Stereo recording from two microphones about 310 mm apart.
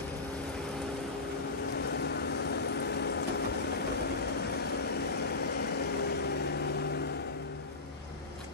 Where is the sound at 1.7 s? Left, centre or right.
Left.